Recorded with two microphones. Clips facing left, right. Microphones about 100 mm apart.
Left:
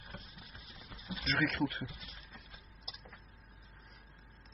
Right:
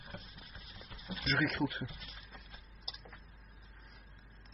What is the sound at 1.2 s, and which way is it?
Speech, 15° right (ahead or behind).